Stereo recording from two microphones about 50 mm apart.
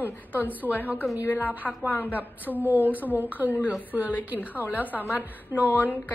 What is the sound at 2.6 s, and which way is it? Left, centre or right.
Speech, right.